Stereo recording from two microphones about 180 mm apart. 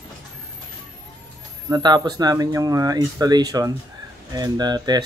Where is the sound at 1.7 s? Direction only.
20° right (ahead or behind).